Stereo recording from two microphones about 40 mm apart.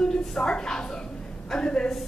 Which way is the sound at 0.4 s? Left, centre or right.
Centre.